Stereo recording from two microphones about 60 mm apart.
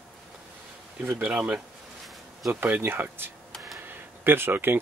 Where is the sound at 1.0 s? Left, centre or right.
Right.